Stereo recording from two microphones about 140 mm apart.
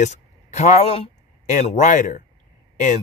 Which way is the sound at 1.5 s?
60° left (ahead or behind).